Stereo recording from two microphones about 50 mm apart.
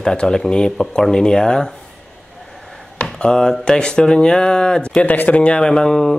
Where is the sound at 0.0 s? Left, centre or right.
Centre.